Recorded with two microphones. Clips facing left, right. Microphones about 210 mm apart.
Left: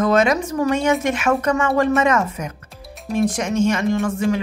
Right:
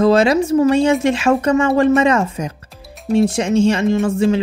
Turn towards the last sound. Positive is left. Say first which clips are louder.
# right 4 dB
turn(degrees=-25)  # may be behind; listen again after turning